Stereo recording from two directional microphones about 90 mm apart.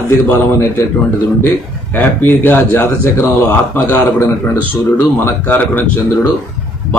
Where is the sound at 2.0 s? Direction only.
20° left (ahead or behind).